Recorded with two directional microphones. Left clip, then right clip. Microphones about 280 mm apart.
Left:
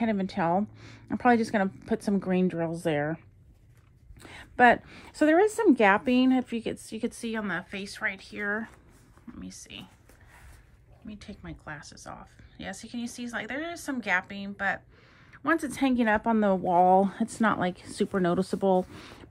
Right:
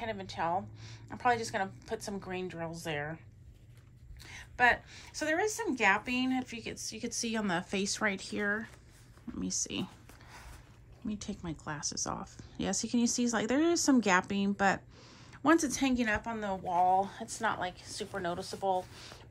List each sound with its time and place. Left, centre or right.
0.0 s speech: left
4.2 s a woman's voice: centre
9.4 s speech: centre
11.1 s speech: centre
16.3 s speech: centre